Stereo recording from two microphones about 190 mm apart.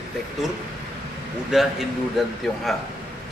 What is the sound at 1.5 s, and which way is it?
A man's voice, centre (ahead or behind).